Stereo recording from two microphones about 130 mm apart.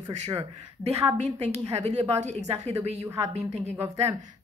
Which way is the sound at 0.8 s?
55° right (ahead or behind).